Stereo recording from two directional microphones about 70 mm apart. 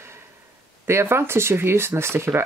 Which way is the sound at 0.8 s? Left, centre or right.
Right.